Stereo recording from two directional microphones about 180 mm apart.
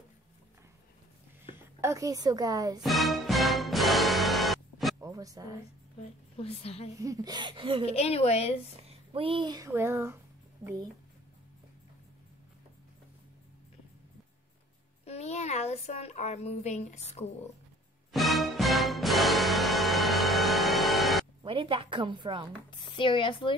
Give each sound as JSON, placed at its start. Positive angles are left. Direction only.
{"t": 1.8, "sound": "a woman's voice", "side_deg": -15}
{"t": 2.8, "sound": "music", "side_deg": 0}
{"t": 5.0, "sound": "a woman's voice", "side_deg": -20}
{"t": 6.3, "sound": "a child's voice", "side_deg": 35}
{"t": 7.0, "sound": "a woman's voice", "side_deg": -20}
{"t": 7.8, "sound": "a child's voice", "side_deg": 35}
{"t": 8.8, "sound": "speech", "side_deg": -30}
{"t": 9.7, "sound": "a sound", "side_deg": -10}
{"t": 10.6, "sound": "speech", "side_deg": -15}
{"t": 15.0, "sound": "a child's voice", "side_deg": 35}
{"t": 18.1, "sound": "music", "side_deg": 0}
{"t": 21.4, "sound": "a woman's voice", "side_deg": -30}
{"t": 22.7, "sound": "speech", "side_deg": 25}